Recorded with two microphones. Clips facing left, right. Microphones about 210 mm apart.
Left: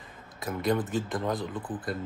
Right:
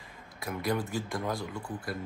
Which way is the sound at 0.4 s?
20° left (ahead or behind).